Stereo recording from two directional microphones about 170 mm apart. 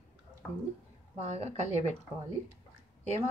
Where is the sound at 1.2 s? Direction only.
40° right (ahead or behind).